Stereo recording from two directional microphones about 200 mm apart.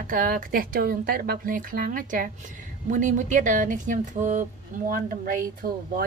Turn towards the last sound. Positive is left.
turn(degrees=-45)  # may be behind; listen again after turning